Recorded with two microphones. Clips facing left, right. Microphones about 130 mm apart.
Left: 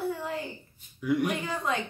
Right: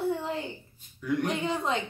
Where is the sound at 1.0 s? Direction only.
10° left (ahead or behind).